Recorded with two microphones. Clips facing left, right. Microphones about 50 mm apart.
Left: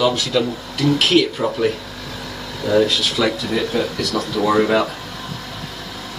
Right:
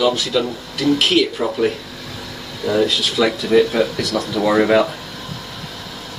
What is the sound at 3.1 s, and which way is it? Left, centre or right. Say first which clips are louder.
Speech: right 9 dB; centre.